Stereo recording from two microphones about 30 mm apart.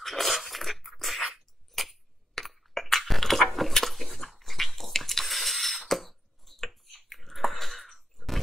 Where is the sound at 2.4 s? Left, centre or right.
Centre.